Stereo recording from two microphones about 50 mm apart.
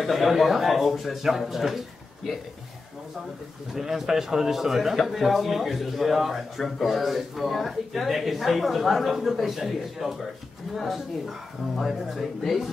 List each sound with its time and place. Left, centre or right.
0.0 s a man's voice: centre
3.7 s a man's voice: centre